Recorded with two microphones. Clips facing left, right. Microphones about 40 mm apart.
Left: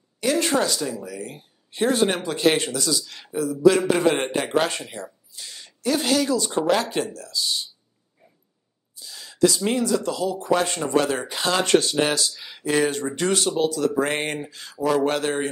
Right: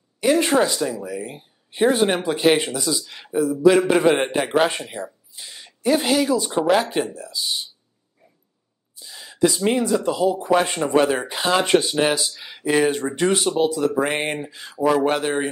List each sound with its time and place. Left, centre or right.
0.2 s speech: centre
9.0 s speech: centre